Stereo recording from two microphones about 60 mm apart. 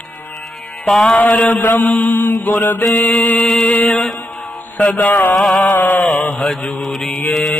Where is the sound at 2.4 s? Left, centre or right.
Left.